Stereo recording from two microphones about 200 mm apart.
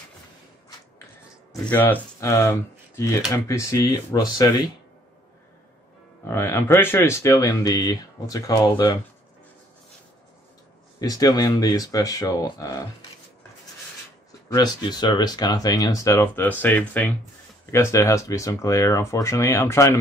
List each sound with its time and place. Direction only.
1.5 s speech: 10° left (ahead or behind)
6.2 s speech: 10° left (ahead or behind)
11.0 s speech: 20° left (ahead or behind)
14.5 s speech: 20° left (ahead or behind)